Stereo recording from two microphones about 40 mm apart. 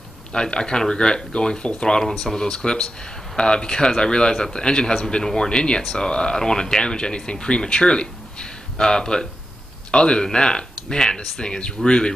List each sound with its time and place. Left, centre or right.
0.3 s speech: left